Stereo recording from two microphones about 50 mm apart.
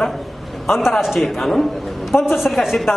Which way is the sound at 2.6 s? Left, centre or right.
Centre.